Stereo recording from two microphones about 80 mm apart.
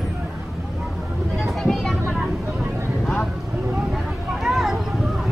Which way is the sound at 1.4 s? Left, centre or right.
Centre.